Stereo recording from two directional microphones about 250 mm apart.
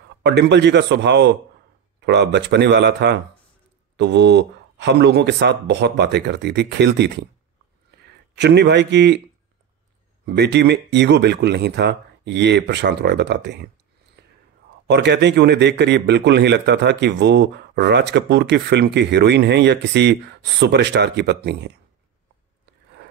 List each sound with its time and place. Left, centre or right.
0.2 s a man's voice: right
10.2 s a man's voice: right
14.2 s whispering: right
14.9 s a man's voice: right